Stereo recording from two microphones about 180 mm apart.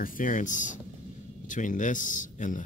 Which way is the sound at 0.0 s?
50° left (ahead or behind).